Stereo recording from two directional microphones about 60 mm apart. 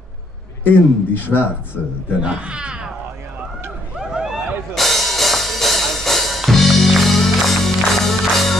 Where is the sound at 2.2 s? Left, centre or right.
Centre.